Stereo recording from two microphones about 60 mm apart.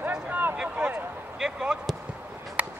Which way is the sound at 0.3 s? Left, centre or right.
Right.